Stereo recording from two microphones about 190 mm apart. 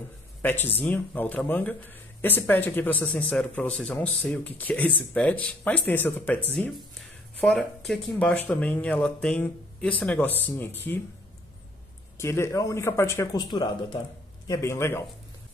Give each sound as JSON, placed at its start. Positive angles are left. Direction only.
{"t": 0.4, "sound": "speech", "side_deg": 10}
{"t": 12.2, "sound": "speech", "side_deg": 15}